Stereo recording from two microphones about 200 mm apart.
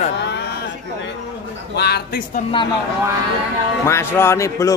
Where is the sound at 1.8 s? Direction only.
55° left (ahead or behind).